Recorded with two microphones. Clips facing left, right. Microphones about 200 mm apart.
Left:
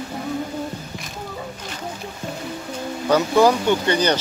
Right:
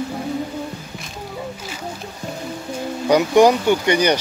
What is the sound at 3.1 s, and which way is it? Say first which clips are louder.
Speech: right 3 dB; 15° right (ahead or behind).